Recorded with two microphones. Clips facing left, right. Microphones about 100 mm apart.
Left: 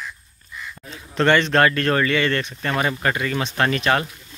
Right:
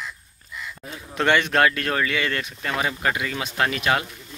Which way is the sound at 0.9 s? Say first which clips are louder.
Left 3 dB; 10° right (ahead or behind).